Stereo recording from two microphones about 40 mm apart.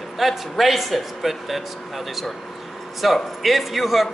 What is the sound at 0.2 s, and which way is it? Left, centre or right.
A man's voice, centre.